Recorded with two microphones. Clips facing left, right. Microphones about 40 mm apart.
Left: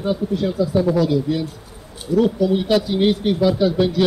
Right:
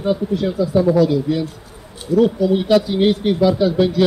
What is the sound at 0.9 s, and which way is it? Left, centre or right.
Speech, left.